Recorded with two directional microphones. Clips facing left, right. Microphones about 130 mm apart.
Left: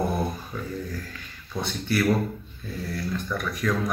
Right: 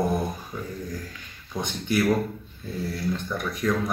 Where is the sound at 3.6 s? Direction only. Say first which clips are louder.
Right 2 dB; 20° right (ahead or behind).